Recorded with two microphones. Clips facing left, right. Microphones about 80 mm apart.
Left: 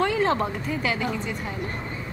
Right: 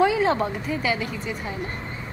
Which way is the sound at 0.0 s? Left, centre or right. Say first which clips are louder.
Right 2 dB; centre.